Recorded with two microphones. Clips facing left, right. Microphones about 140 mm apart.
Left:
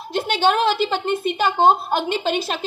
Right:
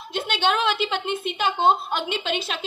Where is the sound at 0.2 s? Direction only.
45° left (ahead or behind).